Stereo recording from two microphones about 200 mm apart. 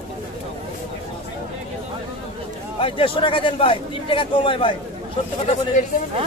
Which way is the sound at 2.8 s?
25° left (ahead or behind).